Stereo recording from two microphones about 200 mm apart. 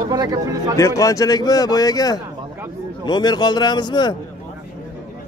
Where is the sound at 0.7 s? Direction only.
15° left (ahead or behind).